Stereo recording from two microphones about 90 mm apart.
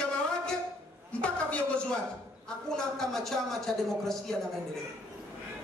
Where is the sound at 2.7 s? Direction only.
5° left (ahead or behind).